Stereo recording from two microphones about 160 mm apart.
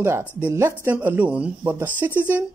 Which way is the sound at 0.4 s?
10° right (ahead or behind).